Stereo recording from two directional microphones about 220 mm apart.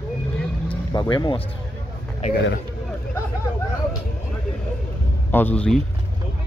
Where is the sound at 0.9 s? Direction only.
20° left (ahead or behind).